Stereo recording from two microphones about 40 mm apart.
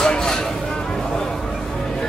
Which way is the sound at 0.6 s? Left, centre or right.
Centre.